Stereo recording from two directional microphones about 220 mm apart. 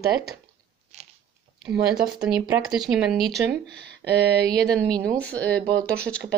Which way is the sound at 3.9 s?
50° right (ahead or behind).